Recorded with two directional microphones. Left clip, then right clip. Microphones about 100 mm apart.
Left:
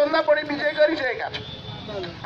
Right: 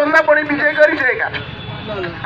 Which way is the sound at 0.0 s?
30° left (ahead or behind).